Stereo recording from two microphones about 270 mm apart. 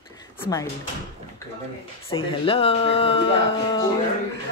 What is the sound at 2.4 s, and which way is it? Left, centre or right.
Speech, left.